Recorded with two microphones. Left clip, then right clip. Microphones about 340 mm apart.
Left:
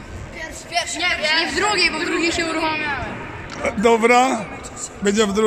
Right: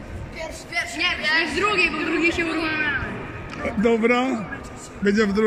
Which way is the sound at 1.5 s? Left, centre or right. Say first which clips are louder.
Left 2 dB; centre.